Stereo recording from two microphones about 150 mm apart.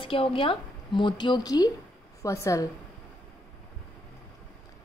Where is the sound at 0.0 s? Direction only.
35° left (ahead or behind); by 2.7 s 20° left (ahead or behind).